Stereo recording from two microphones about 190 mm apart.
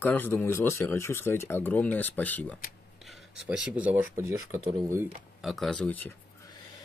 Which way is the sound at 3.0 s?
5° right (ahead or behind).